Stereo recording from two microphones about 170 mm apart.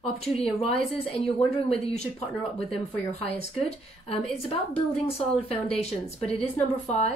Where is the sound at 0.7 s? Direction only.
35° left (ahead or behind).